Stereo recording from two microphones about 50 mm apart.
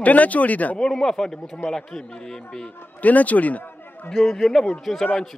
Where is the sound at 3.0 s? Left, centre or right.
Left.